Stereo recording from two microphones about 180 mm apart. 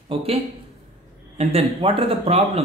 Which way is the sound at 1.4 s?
35° right (ahead or behind).